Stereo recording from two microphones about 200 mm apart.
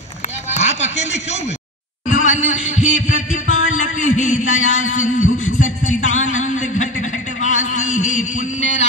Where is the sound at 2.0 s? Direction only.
40° left (ahead or behind).